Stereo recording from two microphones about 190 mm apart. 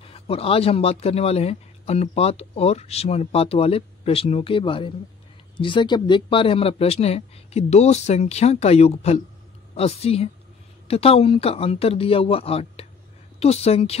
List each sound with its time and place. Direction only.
0.0 s speech: 30° left (ahead or behind)